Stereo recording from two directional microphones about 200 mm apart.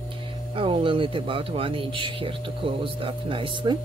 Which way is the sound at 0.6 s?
25° right (ahead or behind).